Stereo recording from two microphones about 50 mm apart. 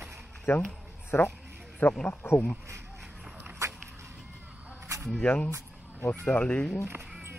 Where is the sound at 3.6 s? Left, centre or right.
Right.